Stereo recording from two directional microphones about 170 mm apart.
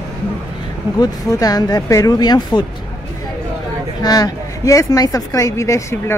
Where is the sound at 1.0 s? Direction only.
20° left (ahead or behind).